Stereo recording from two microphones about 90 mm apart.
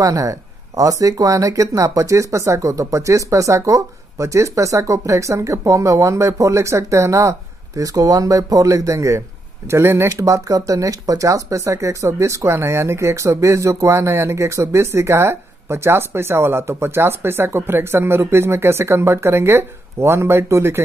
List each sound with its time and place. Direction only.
0.0 s speech: 35° right (ahead or behind)